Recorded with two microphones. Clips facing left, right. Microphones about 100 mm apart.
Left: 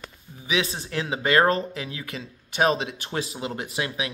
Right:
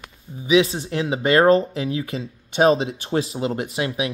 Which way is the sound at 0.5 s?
25° right (ahead or behind).